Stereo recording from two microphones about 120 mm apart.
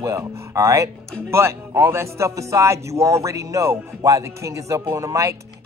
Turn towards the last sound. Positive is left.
turn(degrees=-25)  # may be behind; listen again after turning